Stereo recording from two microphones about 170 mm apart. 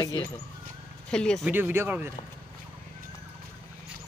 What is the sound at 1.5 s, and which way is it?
Speech, 10° right (ahead or behind).